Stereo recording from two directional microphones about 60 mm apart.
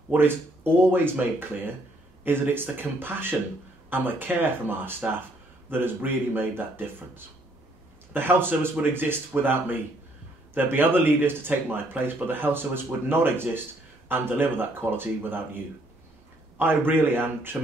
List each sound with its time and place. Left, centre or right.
0.1 s speech: right